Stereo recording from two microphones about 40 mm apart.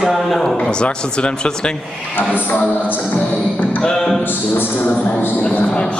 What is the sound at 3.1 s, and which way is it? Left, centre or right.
Music, left.